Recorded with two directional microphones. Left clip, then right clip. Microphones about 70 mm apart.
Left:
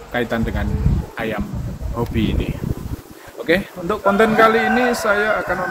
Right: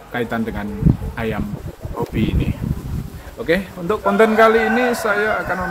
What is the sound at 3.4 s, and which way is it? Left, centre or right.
Speech, centre.